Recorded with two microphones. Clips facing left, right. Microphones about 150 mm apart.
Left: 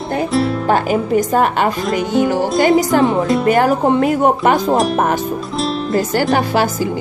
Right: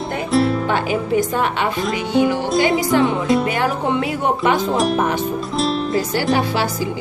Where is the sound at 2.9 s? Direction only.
45° left (ahead or behind).